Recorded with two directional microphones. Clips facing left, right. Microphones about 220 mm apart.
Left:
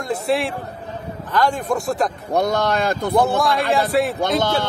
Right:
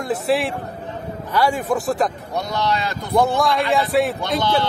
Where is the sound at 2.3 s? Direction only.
50° left (ahead or behind).